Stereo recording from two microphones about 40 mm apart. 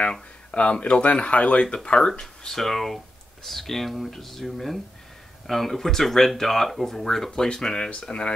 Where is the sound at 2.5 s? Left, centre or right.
Centre.